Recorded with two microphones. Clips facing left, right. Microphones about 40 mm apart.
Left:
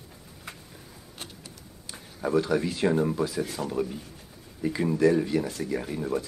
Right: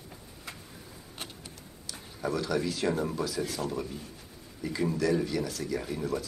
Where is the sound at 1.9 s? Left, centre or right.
Left.